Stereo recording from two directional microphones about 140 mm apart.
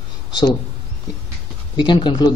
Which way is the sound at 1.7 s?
35° left (ahead or behind).